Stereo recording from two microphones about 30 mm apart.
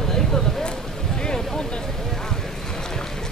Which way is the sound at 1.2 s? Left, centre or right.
Left.